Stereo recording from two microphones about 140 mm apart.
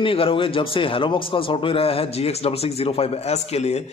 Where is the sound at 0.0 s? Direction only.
40° left (ahead or behind).